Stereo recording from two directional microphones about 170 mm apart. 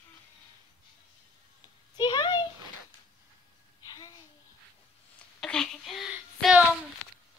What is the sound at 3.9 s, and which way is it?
Babbling, 20° left (ahead or behind).